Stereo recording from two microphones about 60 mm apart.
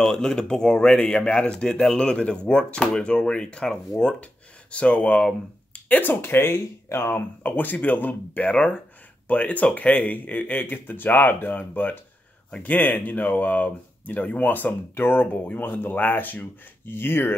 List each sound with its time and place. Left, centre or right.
0.0 s speech: centre; by 17.4 s left